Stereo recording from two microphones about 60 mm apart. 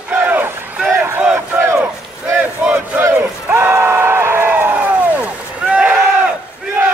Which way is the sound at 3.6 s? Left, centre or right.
Right.